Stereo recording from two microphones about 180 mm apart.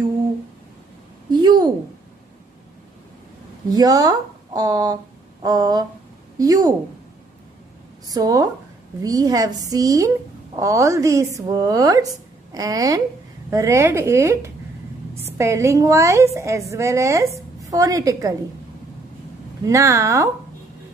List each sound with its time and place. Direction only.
1.3 s a sound: 25° right (ahead or behind)
3.7 s a woman's voice: 20° right (ahead or behind)
8.1 s a woman's voice: 20° right (ahead or behind)
19.6 s a woman's voice: 15° right (ahead or behind)